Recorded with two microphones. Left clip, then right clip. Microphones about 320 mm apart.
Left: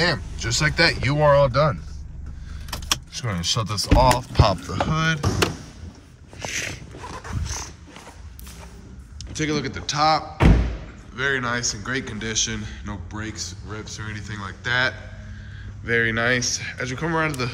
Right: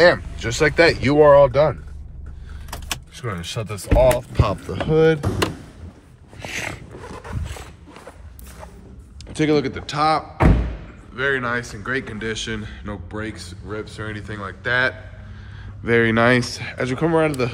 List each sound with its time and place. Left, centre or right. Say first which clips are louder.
0.0 s a man's voice: right 8 dB; centre
2.7 s keys jangling: left 5 dB; centre
4.3 s a man's voice: left 2 dB; centre
6.4 s speech: even; centre
7.4 s wild animals: left 4 dB; centre
9.2 s a man's voice: right 6 dB; centre
15.8 s speech: right 4 dB; centre